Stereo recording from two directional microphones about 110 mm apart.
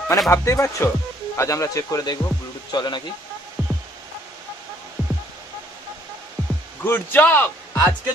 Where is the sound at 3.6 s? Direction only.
25° right (ahead or behind).